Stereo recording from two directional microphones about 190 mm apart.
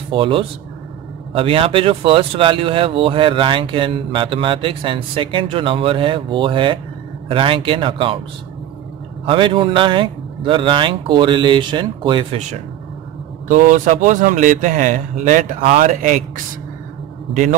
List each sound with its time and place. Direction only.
0.1 s speech: 30° right (ahead or behind)
9.2 s speech: 25° right (ahead or behind)
13.5 s speech: 40° right (ahead or behind)
17.3 s a man's voice: 40° right (ahead or behind)